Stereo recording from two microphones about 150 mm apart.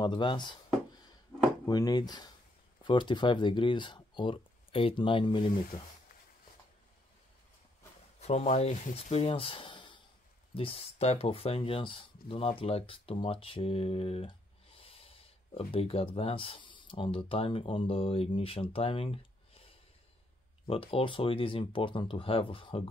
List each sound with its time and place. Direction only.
0.0 s speech: 30° left (ahead or behind)
1.7 s speech: 25° left (ahead or behind)
8.2 s speech: 45° left (ahead or behind)
20.6 s speech: 40° left (ahead or behind)